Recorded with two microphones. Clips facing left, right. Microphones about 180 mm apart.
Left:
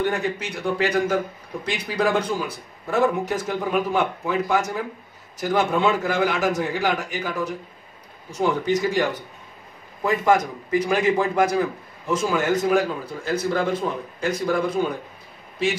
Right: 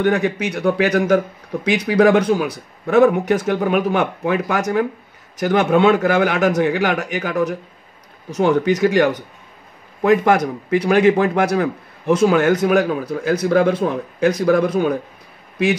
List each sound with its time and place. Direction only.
0.0 s a man's voice: 70° right (ahead or behind)